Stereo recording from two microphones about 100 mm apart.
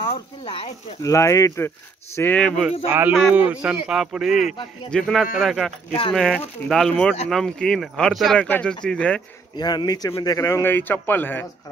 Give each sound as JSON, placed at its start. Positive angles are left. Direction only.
{"t": 0.1, "sound": "speech", "side_deg": 65}
{"t": 1.0, "sound": "speech", "side_deg": 30}
{"t": 2.1, "sound": "speech", "side_deg": 15}
{"t": 3.1, "sound": "speech", "side_deg": -15}
{"t": 6.9, "sound": "speech", "side_deg": 15}
{"t": 9.6, "sound": "a man's voice", "side_deg": 45}